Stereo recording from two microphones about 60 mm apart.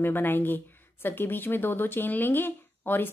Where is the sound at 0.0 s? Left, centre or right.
Left.